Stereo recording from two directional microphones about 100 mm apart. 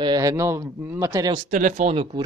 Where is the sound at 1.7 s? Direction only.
80° right.